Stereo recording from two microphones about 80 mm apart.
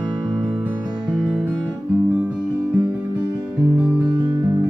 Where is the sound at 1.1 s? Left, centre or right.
Centre.